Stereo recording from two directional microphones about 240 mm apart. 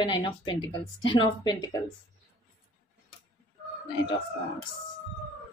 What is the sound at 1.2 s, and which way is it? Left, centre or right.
Speech, centre.